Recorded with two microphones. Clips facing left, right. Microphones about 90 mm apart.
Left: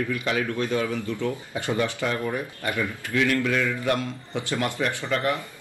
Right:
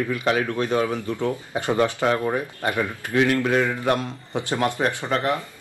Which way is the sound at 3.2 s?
40° right (ahead or behind).